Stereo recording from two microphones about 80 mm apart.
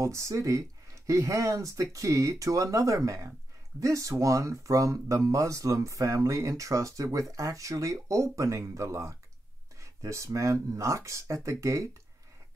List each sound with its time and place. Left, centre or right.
0.0 s speech: right